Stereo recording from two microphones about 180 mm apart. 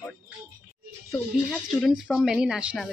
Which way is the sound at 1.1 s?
Centre (ahead or behind).